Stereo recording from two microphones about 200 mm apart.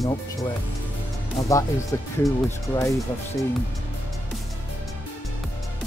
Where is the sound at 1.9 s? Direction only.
15° left (ahead or behind).